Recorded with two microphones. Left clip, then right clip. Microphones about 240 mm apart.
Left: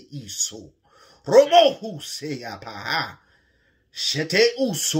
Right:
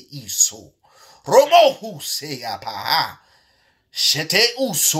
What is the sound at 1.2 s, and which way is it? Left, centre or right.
Speech, right.